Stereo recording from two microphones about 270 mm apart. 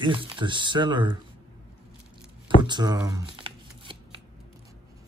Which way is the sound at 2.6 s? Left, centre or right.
Centre.